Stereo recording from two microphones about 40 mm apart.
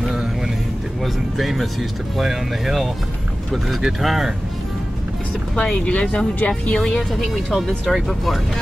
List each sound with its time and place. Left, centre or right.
1.0 s speech: centre
5.6 s speech: left
6.8 s speech: centre
7.5 s speech: centre